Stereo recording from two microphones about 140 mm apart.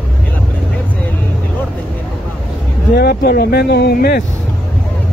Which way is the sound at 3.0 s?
90° left.